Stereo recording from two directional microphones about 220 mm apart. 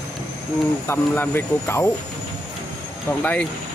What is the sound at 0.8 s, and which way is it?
Speech, 10° left (ahead or behind).